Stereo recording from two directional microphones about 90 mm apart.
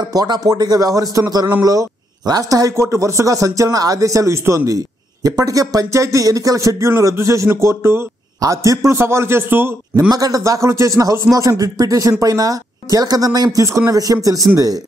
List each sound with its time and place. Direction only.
0.0 s a man's voice: 50° right (ahead or behind); by 8.1 s 25° right (ahead or behind)
8.4 s a man's voice: 40° right (ahead or behind)
9.9 s a man's voice: 45° right (ahead or behind)